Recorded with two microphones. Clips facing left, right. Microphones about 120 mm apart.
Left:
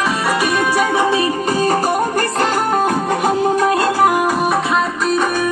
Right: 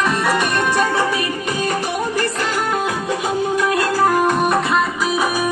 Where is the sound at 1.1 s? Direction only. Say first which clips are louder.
Left 5 dB; 35° left (ahead or behind); by 3.6 s 50° left (ahead or behind).